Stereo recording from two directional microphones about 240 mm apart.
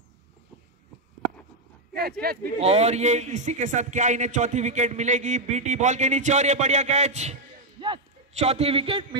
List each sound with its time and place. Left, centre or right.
2.2 s speech: right
2.6 s a man's voice: right